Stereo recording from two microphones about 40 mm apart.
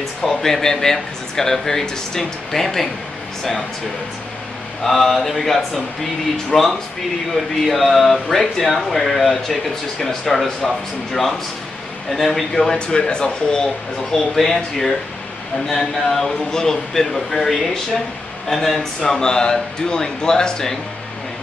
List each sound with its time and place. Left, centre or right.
0.2 s speech: centre
4.8 s speech: centre
12.1 s speech: centre
12.6 s speech: left
14.1 s speech: centre
18.8 s speech: centre